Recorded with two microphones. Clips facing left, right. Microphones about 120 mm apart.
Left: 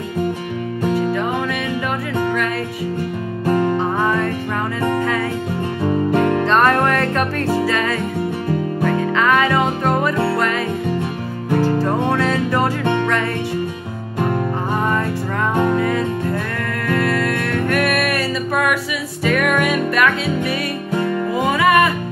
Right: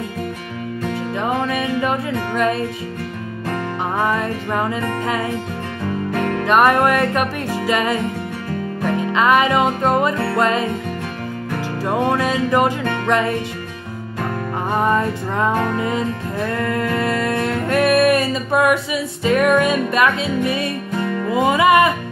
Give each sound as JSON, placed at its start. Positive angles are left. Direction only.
{"t": 1.3, "sound": "music", "side_deg": -25}
{"t": 4.0, "sound": "music", "side_deg": -20}
{"t": 5.9, "sound": "music", "side_deg": 25}
{"t": 6.4, "sound": "music", "side_deg": -15}
{"t": 11.6, "sound": "music", "side_deg": -15}
{"t": 15.8, "sound": "music", "side_deg": -20}